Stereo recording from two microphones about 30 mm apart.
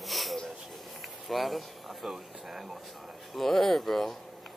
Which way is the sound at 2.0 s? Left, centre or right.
Centre.